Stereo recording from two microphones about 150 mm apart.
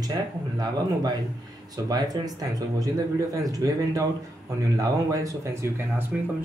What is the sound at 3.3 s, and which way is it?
Speech, 25° right (ahead or behind).